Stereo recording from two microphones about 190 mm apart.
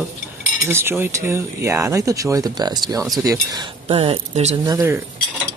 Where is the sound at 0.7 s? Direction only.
10° right (ahead or behind); by 4.6 s 35° right (ahead or behind).